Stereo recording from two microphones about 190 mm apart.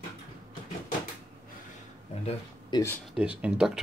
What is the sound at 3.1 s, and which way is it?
Speech, 5° right (ahead or behind).